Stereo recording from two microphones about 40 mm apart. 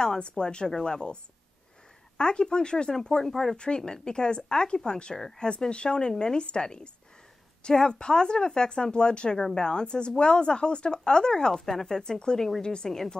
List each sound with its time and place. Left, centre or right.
0.0 s speech: left
2.1 s speech: left
5.1 s speech: centre
5.5 s speech: left
7.9 s speech: centre